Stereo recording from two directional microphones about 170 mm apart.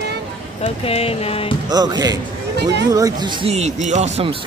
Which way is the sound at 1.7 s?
25° right (ahead or behind).